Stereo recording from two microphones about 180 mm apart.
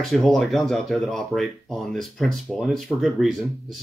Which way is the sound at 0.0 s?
Centre (ahead or behind).